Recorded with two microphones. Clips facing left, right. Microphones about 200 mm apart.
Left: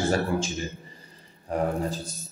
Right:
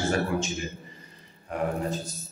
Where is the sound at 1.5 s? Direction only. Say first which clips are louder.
Left 3 dB; 35° left (ahead or behind).